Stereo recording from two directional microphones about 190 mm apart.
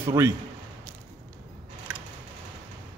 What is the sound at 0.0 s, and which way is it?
Speech, 15° right (ahead or behind).